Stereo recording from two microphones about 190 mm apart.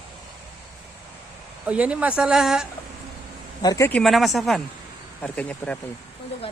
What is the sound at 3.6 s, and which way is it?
Speech, 20° left (ahead or behind).